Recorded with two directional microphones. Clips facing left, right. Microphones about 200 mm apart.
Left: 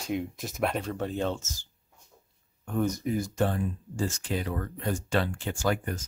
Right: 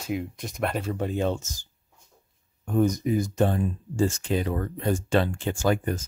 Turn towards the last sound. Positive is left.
turn(degrees=-25)  # may be behind; listen again after turning